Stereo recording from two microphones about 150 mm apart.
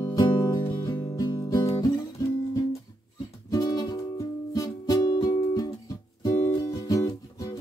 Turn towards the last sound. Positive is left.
turn(degrees=25)  # may be behind; listen again after turning